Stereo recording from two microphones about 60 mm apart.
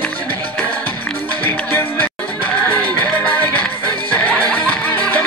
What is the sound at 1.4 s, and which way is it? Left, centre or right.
Music, left.